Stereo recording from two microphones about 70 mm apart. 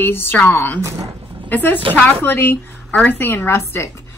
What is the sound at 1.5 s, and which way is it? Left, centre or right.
A woman's voice, left.